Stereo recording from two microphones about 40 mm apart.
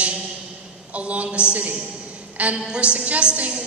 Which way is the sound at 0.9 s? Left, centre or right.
Right.